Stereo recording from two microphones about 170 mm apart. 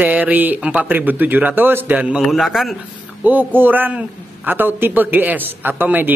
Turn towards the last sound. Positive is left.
turn(degrees=-10)  # may be behind; listen again after turning